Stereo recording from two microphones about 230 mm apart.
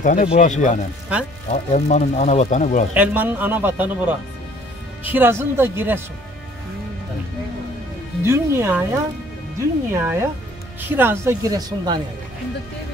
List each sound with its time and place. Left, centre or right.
0.0 s speech: left
2.9 s speech: centre
8.2 s speech: centre